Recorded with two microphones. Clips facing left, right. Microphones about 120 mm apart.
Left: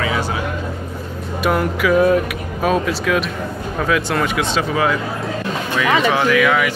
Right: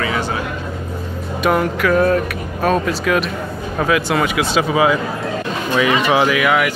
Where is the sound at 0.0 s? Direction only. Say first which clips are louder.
Even; 5° left (ahead or behind).